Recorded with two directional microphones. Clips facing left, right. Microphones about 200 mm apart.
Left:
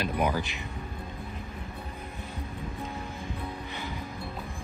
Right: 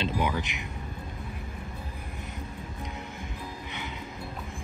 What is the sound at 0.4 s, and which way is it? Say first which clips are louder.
Speech: even; 20° right (ahead or behind).